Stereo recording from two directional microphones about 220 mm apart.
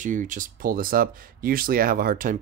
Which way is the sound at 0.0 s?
35° right (ahead or behind).